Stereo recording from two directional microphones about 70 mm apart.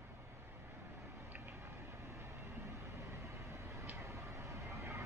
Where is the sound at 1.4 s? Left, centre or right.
Right.